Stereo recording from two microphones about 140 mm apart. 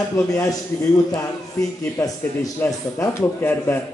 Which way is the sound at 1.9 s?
20° left (ahead or behind).